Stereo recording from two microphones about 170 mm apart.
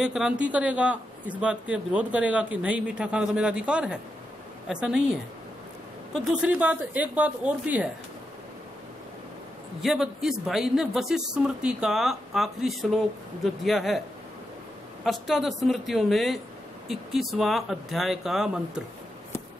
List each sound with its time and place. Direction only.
0.0 s a man's voice: 5° right (ahead or behind)
6.1 s a man's voice: 10° right (ahead or behind)
9.8 s speech: centre (ahead or behind)
15.0 s speech: centre (ahead or behind)